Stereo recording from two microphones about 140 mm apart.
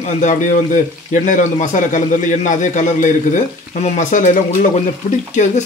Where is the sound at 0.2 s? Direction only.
60° left (ahead or behind).